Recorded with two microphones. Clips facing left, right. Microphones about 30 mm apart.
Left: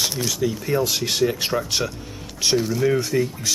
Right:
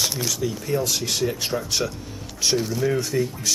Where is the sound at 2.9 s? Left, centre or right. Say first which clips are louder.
Left 2 dB; centre.